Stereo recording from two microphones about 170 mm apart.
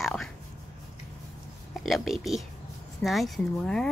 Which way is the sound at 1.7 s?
Centre (ahead or behind).